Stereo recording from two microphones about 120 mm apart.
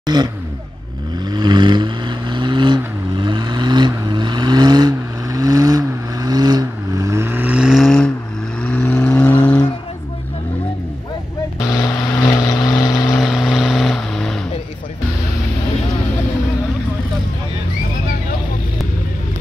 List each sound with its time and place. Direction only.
0.0 s speech: 35° right (ahead or behind)
1.1 s vehicle: 35° right (ahead or behind); by 9.7 s 10° left (ahead or behind)
11.8 s vehicle: 30° left (ahead or behind)
13.1 s vehicle: centre (ahead or behind)